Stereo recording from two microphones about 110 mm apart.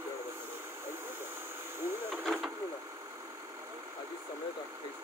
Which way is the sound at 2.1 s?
5° right (ahead or behind).